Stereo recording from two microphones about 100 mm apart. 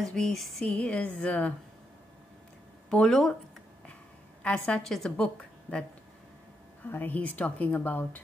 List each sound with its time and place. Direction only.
0.0 s a woman's voice: 5° left (ahead or behind)
2.9 s speech: 5° left (ahead or behind)
4.4 s a woman's voice: 15° left (ahead or behind)
6.9 s a woman's voice: 20° left (ahead or behind)